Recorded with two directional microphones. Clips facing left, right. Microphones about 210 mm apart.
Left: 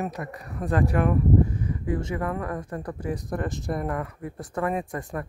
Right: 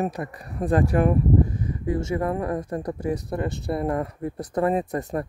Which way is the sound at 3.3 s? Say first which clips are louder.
Right 2 dB; 25° right (ahead or behind).